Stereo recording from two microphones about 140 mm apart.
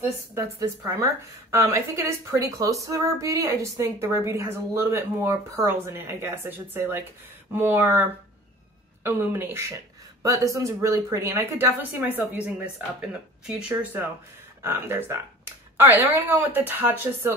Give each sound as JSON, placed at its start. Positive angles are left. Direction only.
{"t": 0.3, "sound": "a woman's voice", "side_deg": -25}
{"t": 14.6, "sound": "speech", "side_deg": -15}